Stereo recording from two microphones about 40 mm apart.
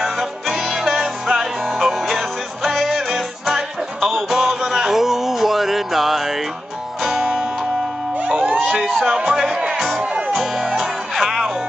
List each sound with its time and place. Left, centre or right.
0.0 s music: centre
8.5 s a sound: centre
9.0 s music: centre
9.8 s music: centre